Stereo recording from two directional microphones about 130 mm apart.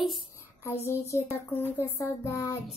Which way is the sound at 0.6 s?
20° left (ahead or behind).